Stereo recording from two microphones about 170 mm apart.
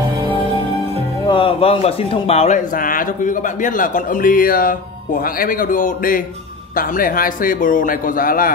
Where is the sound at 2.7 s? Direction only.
55° left (ahead or behind).